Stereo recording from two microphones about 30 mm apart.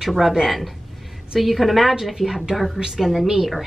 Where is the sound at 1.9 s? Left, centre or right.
Centre.